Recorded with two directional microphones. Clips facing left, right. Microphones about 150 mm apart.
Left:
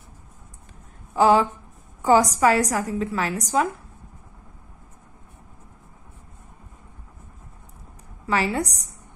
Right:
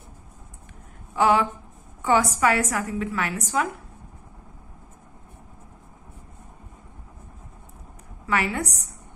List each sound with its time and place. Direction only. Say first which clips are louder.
1.1 s a woman's voice: left 3 dB; 35° left (ahead or behind)
8.3 s a woman's voice: left 2 dB; 35° left (ahead or behind)